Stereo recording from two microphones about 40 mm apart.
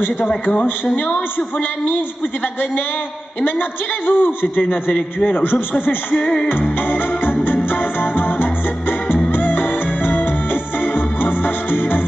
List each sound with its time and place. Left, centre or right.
4.1 s a man's voice: left
6.2 s music: centre
6.9 s music: left